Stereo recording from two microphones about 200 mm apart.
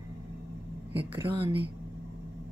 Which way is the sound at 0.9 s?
25° right (ahead or behind).